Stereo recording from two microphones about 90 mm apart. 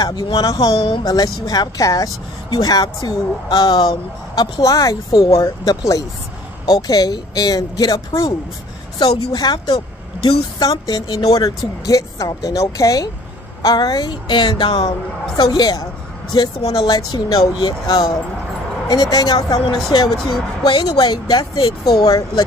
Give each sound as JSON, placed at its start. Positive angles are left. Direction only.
{"t": 0.0, "sound": "a woman's voice", "side_deg": 50}
{"t": 0.7, "sound": "speech", "side_deg": 80}
{"t": 1.0, "sound": "a woman's voice", "side_deg": 45}
{"t": 9.0, "sound": "a woman's voice", "side_deg": 50}
{"t": 16.6, "sound": "a woman's voice", "side_deg": 90}
{"t": 17.1, "sound": "a woman's voice", "side_deg": 50}